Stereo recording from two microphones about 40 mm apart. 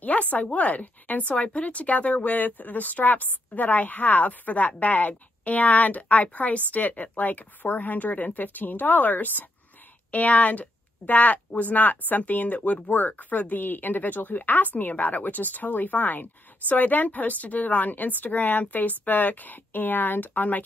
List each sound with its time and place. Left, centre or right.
0.0 s speech: left